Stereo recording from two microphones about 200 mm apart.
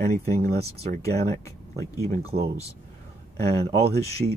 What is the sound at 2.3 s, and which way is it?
Speech, 30° right (ahead or behind).